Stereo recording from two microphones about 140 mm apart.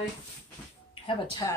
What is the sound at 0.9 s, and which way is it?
Speech, 35° left (ahead or behind).